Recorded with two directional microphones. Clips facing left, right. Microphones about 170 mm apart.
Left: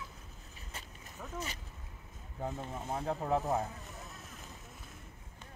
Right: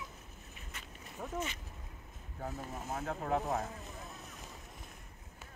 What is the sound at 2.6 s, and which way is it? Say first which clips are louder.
Speech: left 2 dB; 30° left (ahead or behind).